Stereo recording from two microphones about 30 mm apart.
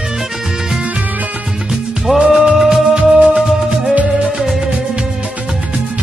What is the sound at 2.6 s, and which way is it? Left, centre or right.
Music, centre.